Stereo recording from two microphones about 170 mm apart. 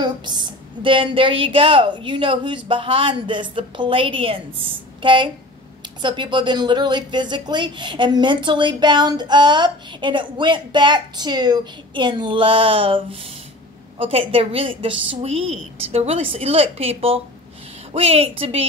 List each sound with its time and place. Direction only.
0.0 s a woman's voice: 25° right (ahead or behind)